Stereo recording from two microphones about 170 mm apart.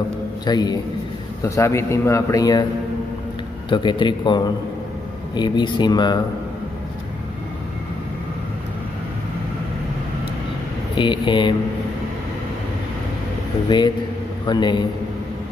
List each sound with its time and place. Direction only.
0.5 s speech: 25° left (ahead or behind)
3.7 s speech: 25° left (ahead or behind)
11.0 s speech: 25° left (ahead or behind)
13.7 s speech: 25° left (ahead or behind)